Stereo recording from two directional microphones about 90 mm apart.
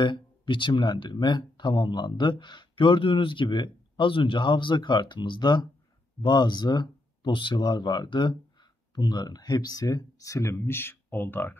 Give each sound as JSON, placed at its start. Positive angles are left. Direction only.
{"t": 0.0, "sound": "speech", "side_deg": 60}